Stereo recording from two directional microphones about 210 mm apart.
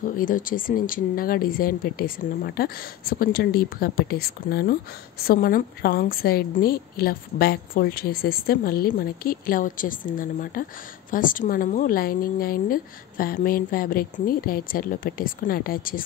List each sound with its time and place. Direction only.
0.0 s a woman's voice: 40° left (ahead or behind)